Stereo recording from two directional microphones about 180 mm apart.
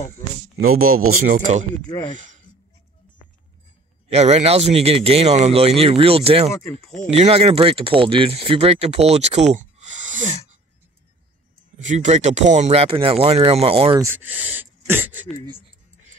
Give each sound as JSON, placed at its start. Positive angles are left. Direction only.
{"t": 1.2, "sound": "speech", "side_deg": -45}
{"t": 2.1, "sound": "a sound", "side_deg": -45}
{"t": 4.1, "sound": "speech", "side_deg": -35}
{"t": 9.1, "sound": "a sound", "side_deg": -35}
{"t": 11.9, "sound": "speech", "side_deg": -40}
{"t": 13.9, "sound": "speech", "side_deg": -10}